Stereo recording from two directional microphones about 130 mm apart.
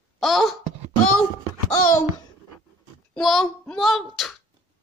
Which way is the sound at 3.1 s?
Centre (ahead or behind).